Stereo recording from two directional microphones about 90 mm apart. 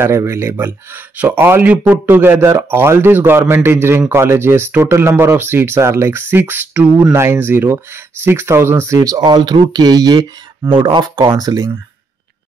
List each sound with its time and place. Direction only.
0.0 s speech: 30° right (ahead or behind)
9.2 s speech: 55° right (ahead or behind)
10.7 s speech: 65° right (ahead or behind)
11.3 s speech: 45° right (ahead or behind)